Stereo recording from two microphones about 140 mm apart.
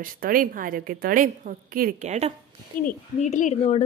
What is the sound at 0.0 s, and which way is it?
A woman's voice, 80° right.